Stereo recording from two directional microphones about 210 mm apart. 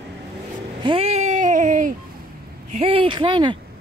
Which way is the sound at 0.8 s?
30° right (ahead or behind).